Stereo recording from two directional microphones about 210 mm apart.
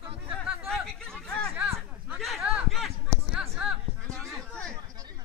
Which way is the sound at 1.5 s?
5° right (ahead or behind).